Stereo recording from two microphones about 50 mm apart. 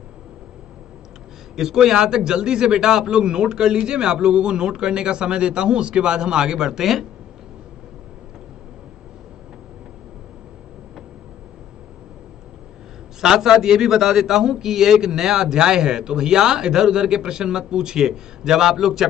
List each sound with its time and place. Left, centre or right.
1.6 s a man's voice: centre
13.2 s a man's voice: centre